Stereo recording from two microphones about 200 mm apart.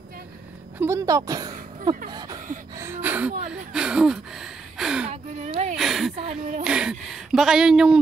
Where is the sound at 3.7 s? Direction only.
5° right (ahead or behind).